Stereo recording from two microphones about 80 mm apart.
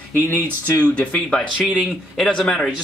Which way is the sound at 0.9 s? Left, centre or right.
Centre.